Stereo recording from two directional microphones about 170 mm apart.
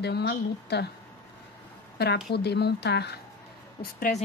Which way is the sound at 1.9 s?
75° left (ahead or behind).